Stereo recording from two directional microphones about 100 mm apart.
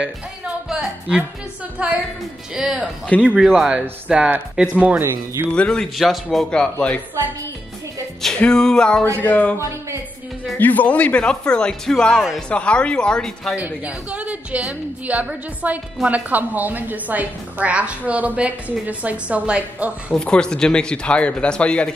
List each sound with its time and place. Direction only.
0.7 s a sound: 10° right (ahead or behind)
1.8 s a woman's voice: 10° right (ahead or behind)
3.1 s speech: 10° left (ahead or behind)
3.3 s a woman's voice: 5° right (ahead or behind)
5.0 s speech: 25° right (ahead or behind)
5.5 s speech: 10° left (ahead or behind)
8.2 s speech: 5° left (ahead or behind)
9.6 s speech: 30° right (ahead or behind)
10.6 s speech: 15° left (ahead or behind)
13.6 s a woman's voice: 15° right (ahead or behind)
20.2 s speech: 10° left (ahead or behind)